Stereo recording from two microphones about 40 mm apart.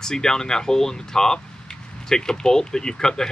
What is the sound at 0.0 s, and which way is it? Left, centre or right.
Speech, centre.